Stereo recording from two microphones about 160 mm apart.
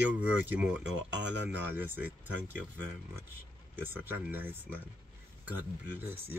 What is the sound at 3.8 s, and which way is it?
Speech, 15° right (ahead or behind).